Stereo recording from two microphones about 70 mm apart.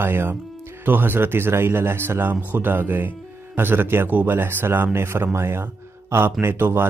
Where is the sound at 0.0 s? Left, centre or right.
Right.